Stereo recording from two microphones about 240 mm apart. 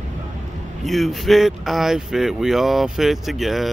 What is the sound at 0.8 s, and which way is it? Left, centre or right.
Speech, centre.